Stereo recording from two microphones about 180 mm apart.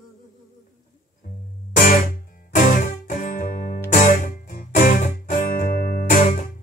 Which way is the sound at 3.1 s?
45° left (ahead or behind).